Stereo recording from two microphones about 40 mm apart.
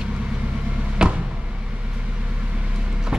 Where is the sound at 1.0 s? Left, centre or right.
Right.